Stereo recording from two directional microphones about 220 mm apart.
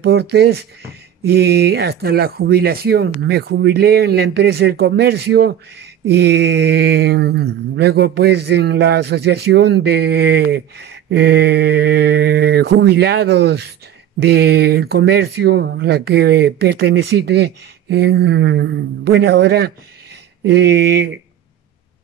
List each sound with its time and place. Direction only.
0.0 s speech: 50° right (ahead or behind)